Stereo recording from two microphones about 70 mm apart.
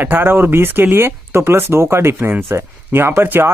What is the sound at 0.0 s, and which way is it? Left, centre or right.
Speech, right.